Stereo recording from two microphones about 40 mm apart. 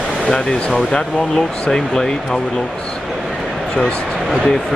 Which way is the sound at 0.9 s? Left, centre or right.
Centre.